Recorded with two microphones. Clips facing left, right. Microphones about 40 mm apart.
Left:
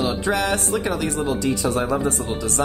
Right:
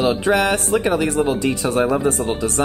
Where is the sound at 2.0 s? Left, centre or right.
Right.